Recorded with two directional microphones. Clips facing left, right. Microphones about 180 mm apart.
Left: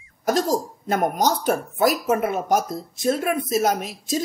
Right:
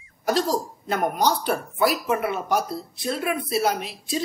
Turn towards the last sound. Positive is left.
turn(degrees=45)  # may be behind; listen again after turning